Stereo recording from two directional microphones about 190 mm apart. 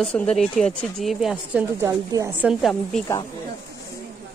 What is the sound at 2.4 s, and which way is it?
Speech, centre (ahead or behind).